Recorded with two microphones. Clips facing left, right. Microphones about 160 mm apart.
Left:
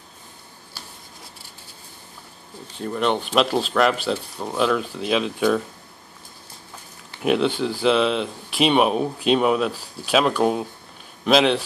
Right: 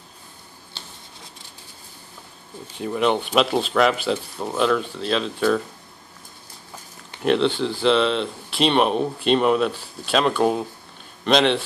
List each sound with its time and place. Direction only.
0.7 s writing: 25° right (ahead or behind)
2.8 s speech: 5° right (ahead or behind)
7.2 s speech: 5° left (ahead or behind)